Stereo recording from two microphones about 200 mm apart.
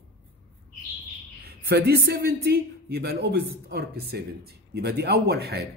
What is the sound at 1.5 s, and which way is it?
A woman's voice, 55° right (ahead or behind).